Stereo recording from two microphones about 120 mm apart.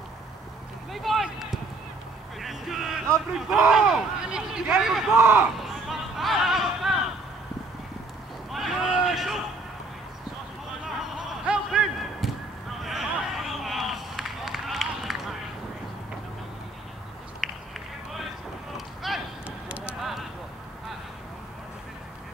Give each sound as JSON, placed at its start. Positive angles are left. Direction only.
{"t": 0.9, "sound": "run", "side_deg": 0}
{"t": 2.4, "sound": "vehicle", "side_deg": 0}
{"t": 3.3, "sound": "speech", "side_deg": 0}
{"t": 5.1, "sound": "speech", "side_deg": -15}
{"t": 5.6, "sound": "a sound", "side_deg": 0}
{"t": 8.5, "sound": "speech", "side_deg": 0}
{"t": 11.1, "sound": "a sound", "side_deg": -10}
{"t": 12.8, "sound": "run", "side_deg": 0}
{"t": 17.4, "sound": "run", "side_deg": 0}
{"t": 19.0, "sound": "a sound", "side_deg": -5}